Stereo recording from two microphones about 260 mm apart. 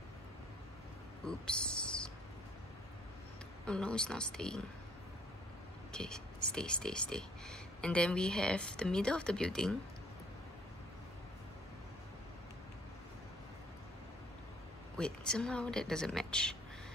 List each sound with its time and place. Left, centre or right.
1.2 s a sound: centre
3.6 s speech: centre
5.9 s speech: centre
15.0 s speech: centre